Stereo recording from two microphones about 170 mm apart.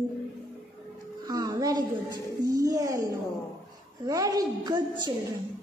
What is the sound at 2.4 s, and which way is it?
Speech, 20° right (ahead or behind).